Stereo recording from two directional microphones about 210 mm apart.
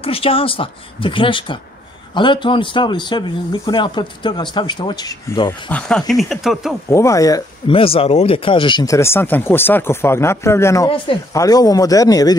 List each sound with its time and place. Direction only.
0.0 s speech: 25° left (ahead or behind)
5.7 s speech: 5° left (ahead or behind)
6.9 s speech: 15° left (ahead or behind)